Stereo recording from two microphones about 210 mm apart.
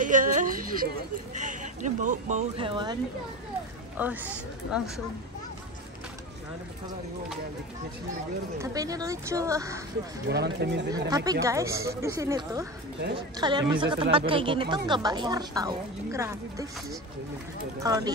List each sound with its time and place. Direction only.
0.0 s a sound: 40° right (ahead or behind)
1.3 s speech: 35° right (ahead or behind)
4.0 s speech: 5° right (ahead or behind)
8.5 s speech: 15° right (ahead or behind)
10.2 s speech: 50° right (ahead or behind)
10.9 s speech: 20° right (ahead or behind)
17.7 s speech: 15° right (ahead or behind)